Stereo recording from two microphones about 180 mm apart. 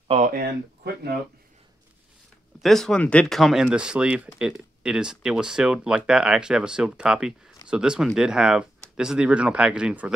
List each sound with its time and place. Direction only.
0.1 s speech: 45° right (ahead or behind)
2.6 s speech: centre (ahead or behind)